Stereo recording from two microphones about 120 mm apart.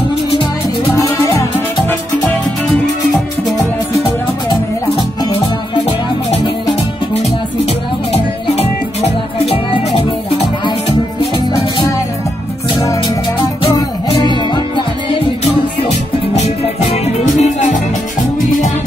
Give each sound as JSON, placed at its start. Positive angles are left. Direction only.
{"t": 9.5, "sound": "music", "side_deg": 40}
{"t": 13.7, "sound": "music", "side_deg": 40}
{"t": 15.9, "sound": "music", "side_deg": 65}